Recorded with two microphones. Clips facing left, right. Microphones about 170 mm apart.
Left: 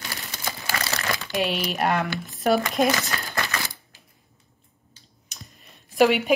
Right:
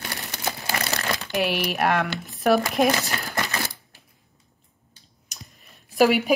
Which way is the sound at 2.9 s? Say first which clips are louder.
Right 1 dB; 25° right (ahead or behind).